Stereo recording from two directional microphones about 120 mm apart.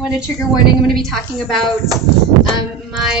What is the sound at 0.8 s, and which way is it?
Speech, centre (ahead or behind).